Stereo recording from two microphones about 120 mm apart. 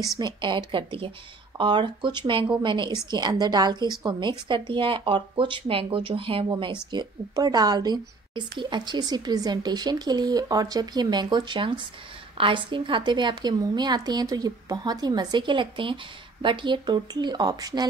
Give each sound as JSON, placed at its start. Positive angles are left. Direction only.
{"t": 0.2, "sound": "a woman's voice", "side_deg": -40}
{"t": 6.9, "sound": "a woman's voice", "side_deg": -35}